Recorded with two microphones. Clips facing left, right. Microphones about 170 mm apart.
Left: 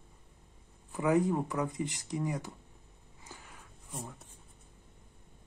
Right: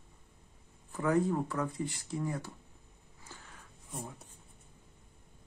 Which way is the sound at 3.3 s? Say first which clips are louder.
Left 1 dB; 15° left (ahead or behind).